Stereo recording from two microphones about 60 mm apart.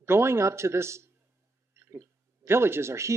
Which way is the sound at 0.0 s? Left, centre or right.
Right.